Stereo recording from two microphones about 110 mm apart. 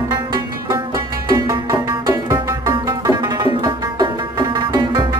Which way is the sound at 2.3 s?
40° right (ahead or behind).